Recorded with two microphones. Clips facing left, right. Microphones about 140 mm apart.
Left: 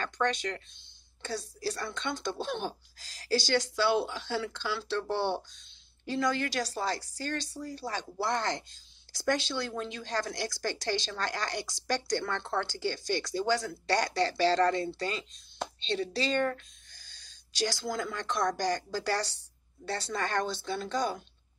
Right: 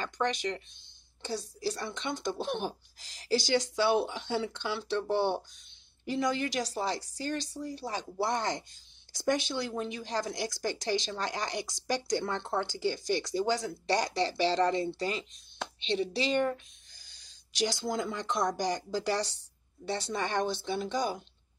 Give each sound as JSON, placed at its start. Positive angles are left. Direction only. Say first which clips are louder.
{"t": 0.0, "sound": "speech", "louder": "left 1 dB", "side_deg": -15}